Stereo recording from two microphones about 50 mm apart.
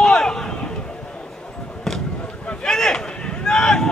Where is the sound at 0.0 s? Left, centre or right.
Centre.